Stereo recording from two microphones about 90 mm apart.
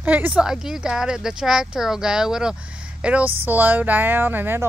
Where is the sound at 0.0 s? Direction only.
15° right (ahead or behind).